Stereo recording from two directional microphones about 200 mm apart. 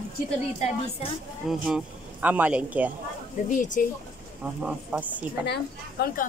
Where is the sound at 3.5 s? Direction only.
40° left (ahead or behind).